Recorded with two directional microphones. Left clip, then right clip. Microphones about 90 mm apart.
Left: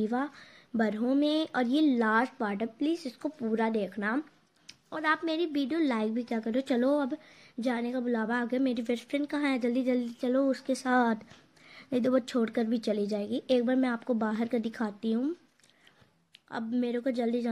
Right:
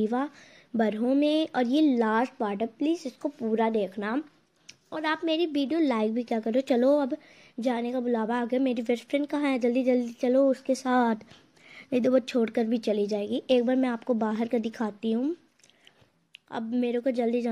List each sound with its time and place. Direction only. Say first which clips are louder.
0.0 s a woman's voice: right 3 dB; 30° right (ahead or behind)
3.8 s speech: right 2 dB; 40° right (ahead or behind)
4.6 s a sound: even; 40° right (ahead or behind)
5.3 s a woman's voice: right 4 dB; 40° right (ahead or behind); by 15.3 s 25° right (ahead or behind)
16.4 s a woman's voice: right 3 dB; 25° right (ahead or behind)